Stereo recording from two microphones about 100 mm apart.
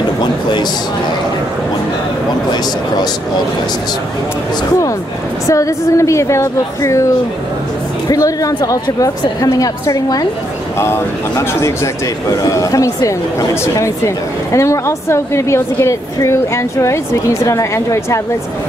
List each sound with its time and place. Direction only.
0.2 s a sound: 50° left (ahead or behind)
5.5 s a woman's voice: 35° left (ahead or behind)
8.1 s a woman's voice: 35° left (ahead or behind)